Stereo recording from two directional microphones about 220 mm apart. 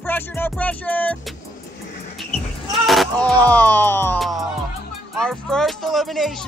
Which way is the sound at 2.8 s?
Centre (ahead or behind).